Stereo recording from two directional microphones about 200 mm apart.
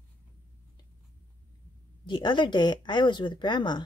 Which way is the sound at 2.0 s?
25° left (ahead or behind).